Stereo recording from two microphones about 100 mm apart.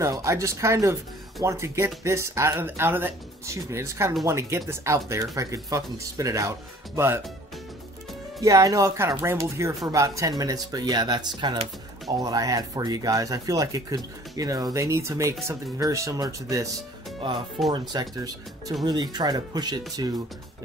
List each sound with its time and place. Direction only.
0.0 s speech: 30° right (ahead or behind)
8.4 s speech: 35° right (ahead or behind)
12.2 s speech: 35° right (ahead or behind)
17.6 s speech: 40° right (ahead or behind)